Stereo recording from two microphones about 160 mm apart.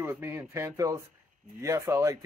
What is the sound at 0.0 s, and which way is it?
Speech, 15° right (ahead or behind).